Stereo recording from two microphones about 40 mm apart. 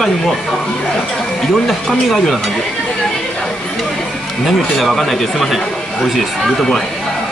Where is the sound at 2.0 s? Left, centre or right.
Centre.